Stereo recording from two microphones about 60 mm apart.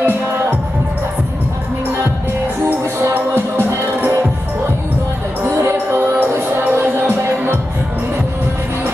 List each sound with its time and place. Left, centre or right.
0.0 s music: right
3.2 s music: right
5.5 s music: right